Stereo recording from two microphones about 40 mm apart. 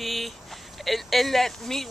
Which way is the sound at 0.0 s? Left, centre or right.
Centre.